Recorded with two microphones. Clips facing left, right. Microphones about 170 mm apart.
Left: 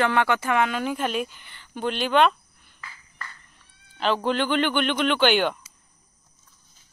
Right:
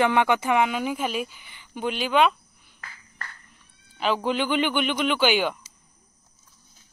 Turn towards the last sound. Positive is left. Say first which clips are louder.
# left 1 dB
turn(degrees=-5)  # may be behind; listen again after turning